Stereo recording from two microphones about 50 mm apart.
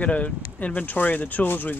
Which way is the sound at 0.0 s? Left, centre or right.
Left.